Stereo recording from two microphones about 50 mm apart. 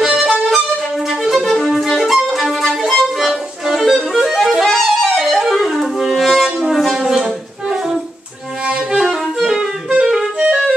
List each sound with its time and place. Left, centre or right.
0.0 s music: centre
9.1 s music: centre